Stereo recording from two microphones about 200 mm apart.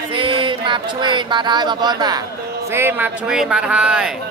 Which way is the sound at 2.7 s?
10° right (ahead or behind).